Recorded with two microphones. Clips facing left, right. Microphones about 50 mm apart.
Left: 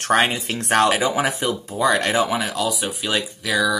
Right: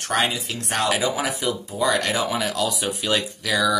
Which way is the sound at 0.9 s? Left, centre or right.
Left.